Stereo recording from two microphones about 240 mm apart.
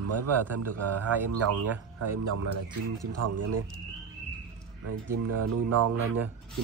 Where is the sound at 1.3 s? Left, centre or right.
Right.